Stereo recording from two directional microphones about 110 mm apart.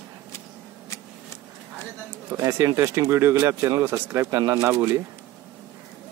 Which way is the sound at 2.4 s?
25° right (ahead or behind).